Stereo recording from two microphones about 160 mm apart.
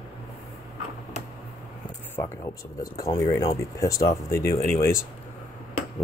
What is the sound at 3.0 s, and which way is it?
Speech, 20° left (ahead or behind).